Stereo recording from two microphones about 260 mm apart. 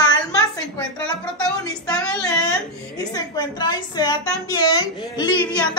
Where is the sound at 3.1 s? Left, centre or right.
Centre.